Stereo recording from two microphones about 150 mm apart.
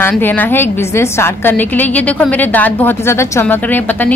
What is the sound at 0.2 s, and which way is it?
A woman's voice, 15° left (ahead or behind).